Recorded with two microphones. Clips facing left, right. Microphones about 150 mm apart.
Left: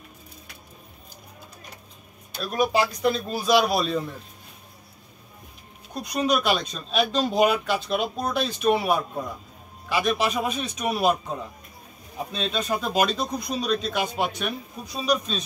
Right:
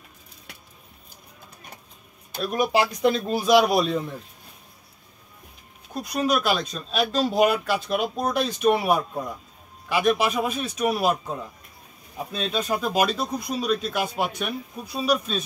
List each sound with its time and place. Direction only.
2.3 s speech: 15° right (ahead or behind)
5.9 s speech: centre (ahead or behind)
12.3 s speech: 5° right (ahead or behind)